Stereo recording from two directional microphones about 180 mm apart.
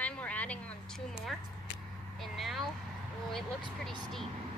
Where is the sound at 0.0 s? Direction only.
5° left (ahead or behind).